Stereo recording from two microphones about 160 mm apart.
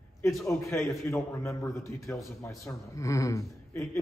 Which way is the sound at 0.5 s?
15° left (ahead or behind).